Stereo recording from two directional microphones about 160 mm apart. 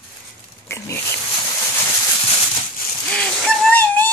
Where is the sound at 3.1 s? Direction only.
5° left (ahead or behind).